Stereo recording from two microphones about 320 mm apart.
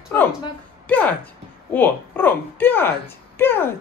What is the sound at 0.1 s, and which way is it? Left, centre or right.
Speech, centre.